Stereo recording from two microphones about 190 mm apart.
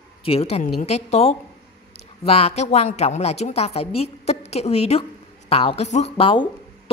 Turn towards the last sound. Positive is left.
turn(degrees=30)  # may be behind; listen again after turning